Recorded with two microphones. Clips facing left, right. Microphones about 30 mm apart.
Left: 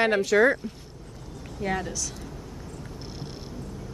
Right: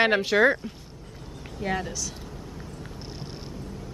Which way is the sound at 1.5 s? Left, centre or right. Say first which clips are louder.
Even; centre.